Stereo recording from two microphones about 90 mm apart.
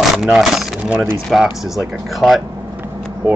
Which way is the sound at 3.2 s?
20° right (ahead or behind).